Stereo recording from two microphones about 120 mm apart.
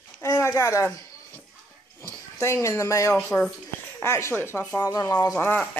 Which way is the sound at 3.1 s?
10° left (ahead or behind).